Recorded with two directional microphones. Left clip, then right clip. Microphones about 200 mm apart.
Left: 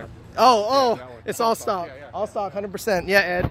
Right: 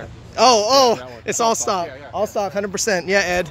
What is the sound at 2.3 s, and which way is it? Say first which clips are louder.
Speech: right 5 dB; 20° right (ahead or behind).